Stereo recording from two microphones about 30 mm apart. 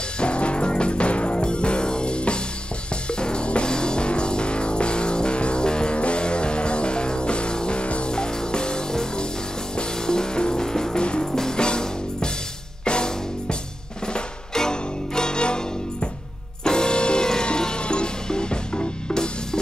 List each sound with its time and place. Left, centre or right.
0.2 s music: left
8.1 s music: left
11.0 s music: left
11.3 s music: centre